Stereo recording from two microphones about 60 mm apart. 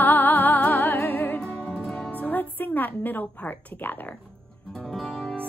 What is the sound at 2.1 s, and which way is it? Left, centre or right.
A woman's voice, left.